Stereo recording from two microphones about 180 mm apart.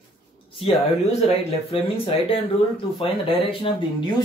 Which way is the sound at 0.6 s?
30° left (ahead or behind).